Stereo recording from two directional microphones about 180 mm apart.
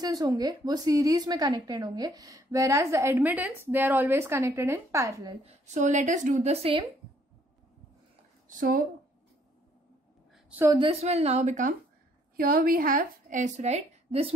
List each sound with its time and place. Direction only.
0.0 s a woman's voice: 20° right (ahead or behind)
5.4 s speech: 40° right (ahead or behind)
8.5 s speech: 50° right (ahead or behind)
10.5 s a woman's voice: 15° right (ahead or behind)
10.8 s speech: 35° right (ahead or behind)
12.4 s a woman's voice: 55° right (ahead or behind); by 14.3 s 35° right (ahead or behind)